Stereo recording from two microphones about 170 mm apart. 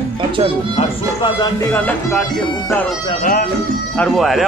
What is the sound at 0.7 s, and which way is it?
Speech, 25° left (ahead or behind).